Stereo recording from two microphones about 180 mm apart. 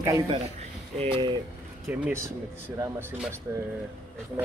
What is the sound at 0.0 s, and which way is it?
Speech, 20° right (ahead or behind).